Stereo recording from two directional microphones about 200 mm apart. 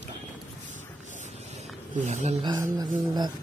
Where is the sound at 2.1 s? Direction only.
35° right (ahead or behind).